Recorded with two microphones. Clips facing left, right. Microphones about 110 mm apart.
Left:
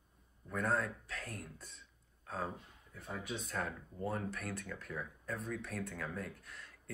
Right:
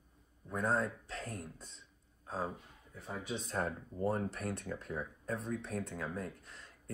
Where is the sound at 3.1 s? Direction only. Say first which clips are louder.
Right 2 dB; 30° right (ahead or behind).